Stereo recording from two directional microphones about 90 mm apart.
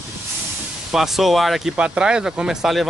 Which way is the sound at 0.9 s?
5° right (ahead or behind).